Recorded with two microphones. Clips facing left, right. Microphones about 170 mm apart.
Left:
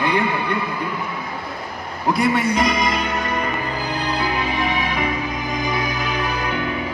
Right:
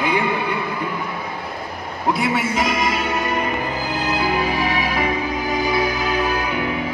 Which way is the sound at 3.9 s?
5° right (ahead or behind).